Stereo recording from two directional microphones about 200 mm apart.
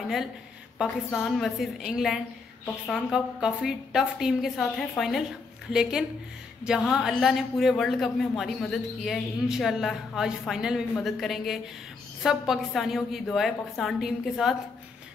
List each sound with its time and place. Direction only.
0.7 s a man's voice: centre (ahead or behind)